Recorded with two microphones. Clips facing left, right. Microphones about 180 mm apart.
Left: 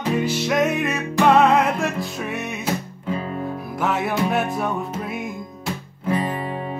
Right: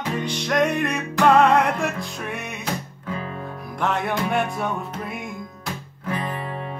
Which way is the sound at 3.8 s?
5° left (ahead or behind).